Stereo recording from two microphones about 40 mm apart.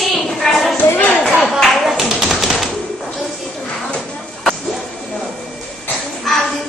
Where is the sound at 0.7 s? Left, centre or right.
Left.